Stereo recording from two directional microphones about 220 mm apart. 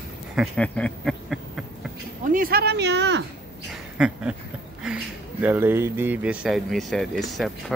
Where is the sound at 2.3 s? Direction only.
40° right (ahead or behind).